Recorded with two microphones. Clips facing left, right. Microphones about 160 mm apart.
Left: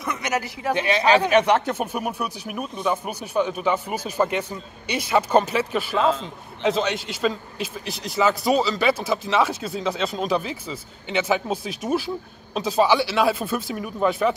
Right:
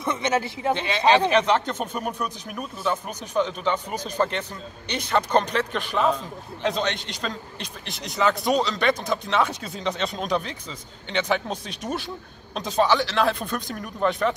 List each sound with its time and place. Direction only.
0.0 s speech: 25° right (ahead or behind)
0.7 s a man's voice: 10° left (ahead or behind)